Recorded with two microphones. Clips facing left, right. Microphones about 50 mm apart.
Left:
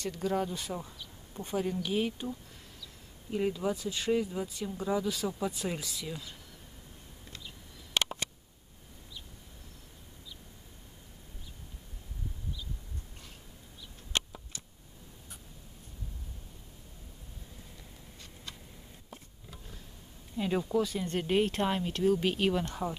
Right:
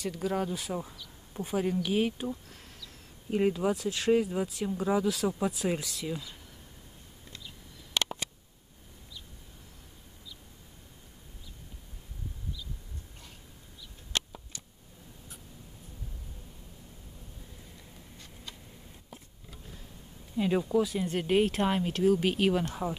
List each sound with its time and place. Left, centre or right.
0.0 s speech: centre
3.3 s speech: right
3.7 s speech: centre
4.1 s speech: right
5.0 s speech: centre
14.1 s tick: left
17.7 s a sound: centre
20.3 s speech: centre